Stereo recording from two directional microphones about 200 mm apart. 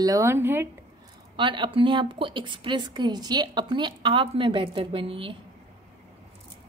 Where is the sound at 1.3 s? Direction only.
25° right (ahead or behind).